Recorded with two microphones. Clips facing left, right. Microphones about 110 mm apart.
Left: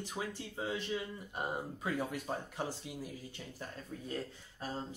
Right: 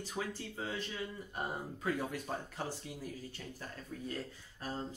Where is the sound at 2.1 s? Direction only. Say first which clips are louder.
Left 1 dB; 15° left (ahead or behind).